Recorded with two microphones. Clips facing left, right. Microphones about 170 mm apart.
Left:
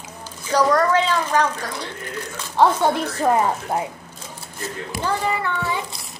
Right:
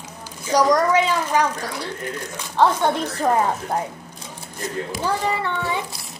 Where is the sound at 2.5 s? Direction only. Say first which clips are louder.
Left 1 dB; 10° left (ahead or behind).